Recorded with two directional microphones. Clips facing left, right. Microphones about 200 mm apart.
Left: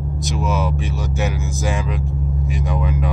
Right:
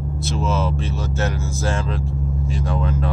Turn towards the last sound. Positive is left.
turn(degrees=15)  # may be behind; listen again after turning